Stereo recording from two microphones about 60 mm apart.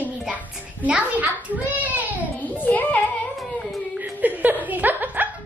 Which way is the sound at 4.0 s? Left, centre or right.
Right.